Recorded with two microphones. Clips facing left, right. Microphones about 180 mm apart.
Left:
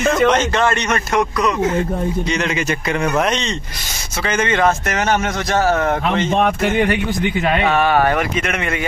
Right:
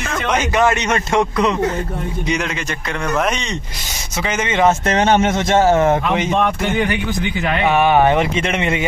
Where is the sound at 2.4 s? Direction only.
5° left (ahead or behind).